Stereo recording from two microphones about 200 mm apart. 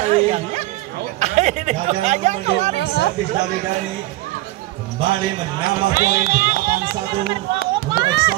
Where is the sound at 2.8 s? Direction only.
55° left (ahead or behind).